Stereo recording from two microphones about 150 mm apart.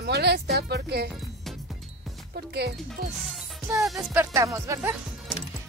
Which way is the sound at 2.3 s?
85° right.